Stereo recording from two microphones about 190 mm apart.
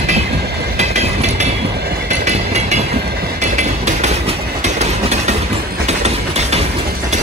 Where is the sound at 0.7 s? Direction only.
35° right (ahead or behind).